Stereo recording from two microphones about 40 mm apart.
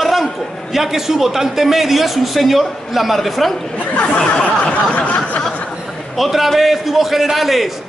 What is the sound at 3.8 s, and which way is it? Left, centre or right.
Speech, left.